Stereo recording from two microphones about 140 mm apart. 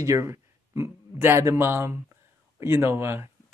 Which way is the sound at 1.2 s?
20° right (ahead or behind).